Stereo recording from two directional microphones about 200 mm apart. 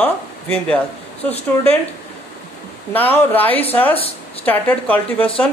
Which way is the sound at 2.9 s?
10° left (ahead or behind).